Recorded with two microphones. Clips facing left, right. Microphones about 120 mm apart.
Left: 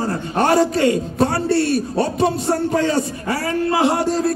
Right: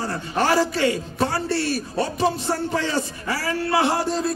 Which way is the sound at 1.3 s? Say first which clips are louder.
Left 6 dB; 60° left (ahead or behind).